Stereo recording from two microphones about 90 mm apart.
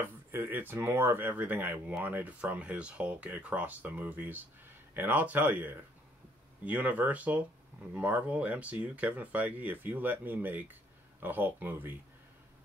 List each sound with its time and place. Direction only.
0.3 s speech: 25° right (ahead or behind)